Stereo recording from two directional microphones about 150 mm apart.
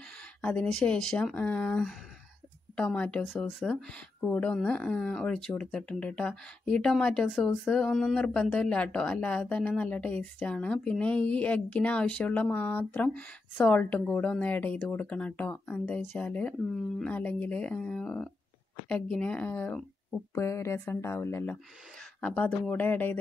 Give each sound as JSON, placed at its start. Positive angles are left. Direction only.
{"t": 0.4, "sound": "speech", "side_deg": 10}